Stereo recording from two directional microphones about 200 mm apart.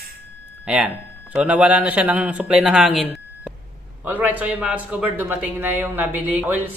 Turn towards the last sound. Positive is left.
turn(degrees=-10)  # may be behind; listen again after turning